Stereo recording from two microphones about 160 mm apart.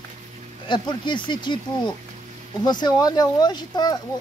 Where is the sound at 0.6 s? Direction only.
30° left (ahead or behind).